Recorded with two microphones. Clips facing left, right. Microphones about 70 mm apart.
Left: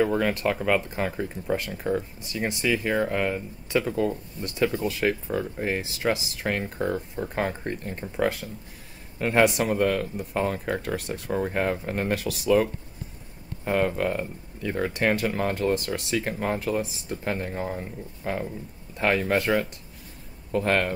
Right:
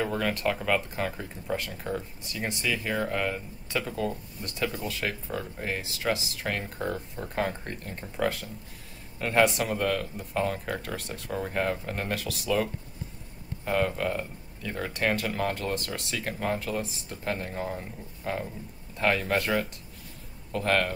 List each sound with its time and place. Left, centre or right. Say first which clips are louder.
0.0 s speech: left 5 dB; centre
9.2 s speech: left 3 dB; centre
13.7 s speech: left 3 dB; centre